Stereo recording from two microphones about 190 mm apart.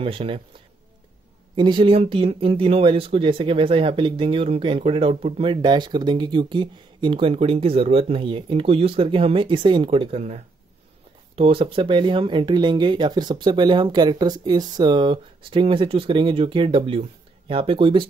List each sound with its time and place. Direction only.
0.0 s speech: 30° right (ahead or behind)
1.5 s speech: 25° right (ahead or behind)